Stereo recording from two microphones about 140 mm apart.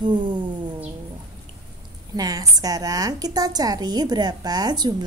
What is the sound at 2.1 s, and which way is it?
A woman's voice, 25° right (ahead or behind).